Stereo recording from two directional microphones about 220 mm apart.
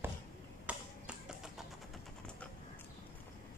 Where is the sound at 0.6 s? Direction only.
5° right (ahead or behind).